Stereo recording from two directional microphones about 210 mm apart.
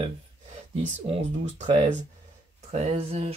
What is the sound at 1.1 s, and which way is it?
Speech, 30° right (ahead or behind).